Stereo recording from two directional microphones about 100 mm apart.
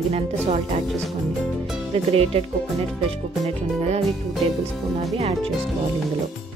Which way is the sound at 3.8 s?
90° right.